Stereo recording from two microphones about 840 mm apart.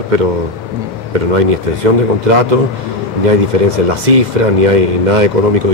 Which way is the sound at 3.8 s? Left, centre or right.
Right.